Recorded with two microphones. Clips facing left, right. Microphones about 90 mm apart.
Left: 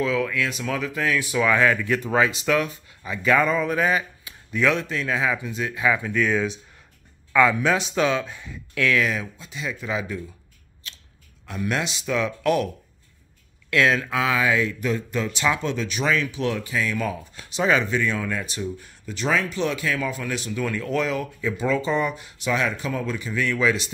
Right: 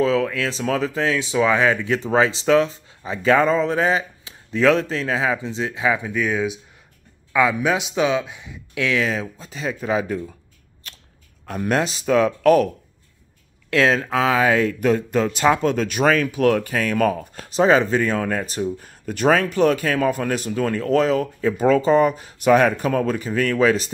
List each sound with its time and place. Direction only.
0.0 s speech: 35° right (ahead or behind)
11.4 s speech: 45° right (ahead or behind)
13.7 s speech: 30° right (ahead or behind)
22.5 s speech: 55° right (ahead or behind)